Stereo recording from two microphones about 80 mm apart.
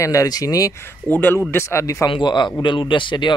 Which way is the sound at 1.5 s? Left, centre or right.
Left.